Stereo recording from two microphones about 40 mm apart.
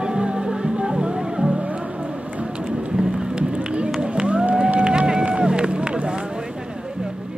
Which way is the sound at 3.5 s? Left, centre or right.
Right.